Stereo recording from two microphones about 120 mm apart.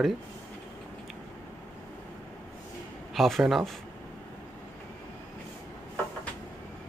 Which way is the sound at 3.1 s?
Centre (ahead or behind).